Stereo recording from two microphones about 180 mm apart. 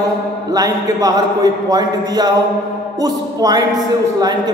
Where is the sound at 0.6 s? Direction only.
20° right (ahead or behind).